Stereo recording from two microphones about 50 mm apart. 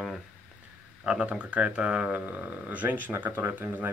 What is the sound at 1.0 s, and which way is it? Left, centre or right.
Speech, right.